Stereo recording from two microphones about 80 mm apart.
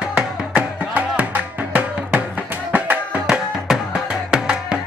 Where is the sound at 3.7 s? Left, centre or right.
Centre.